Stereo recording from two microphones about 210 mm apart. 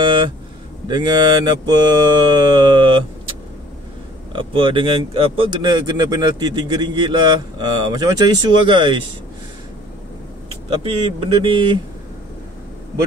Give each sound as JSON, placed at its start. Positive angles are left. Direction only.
{"t": 0.0, "sound": "a sound", "side_deg": -25}
{"t": 0.8, "sound": "speech", "side_deg": -20}
{"t": 4.3, "sound": "speech", "side_deg": -25}
{"t": 11.1, "sound": "speech", "side_deg": -25}